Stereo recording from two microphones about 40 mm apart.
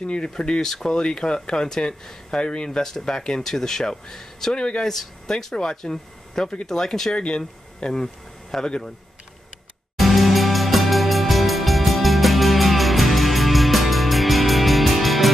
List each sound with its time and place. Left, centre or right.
0.0 s speech: left
0.6 s speech: centre
4.6 s speech: left
4.8 s speech: centre
7.2 s speech: left
9.9 s music: centre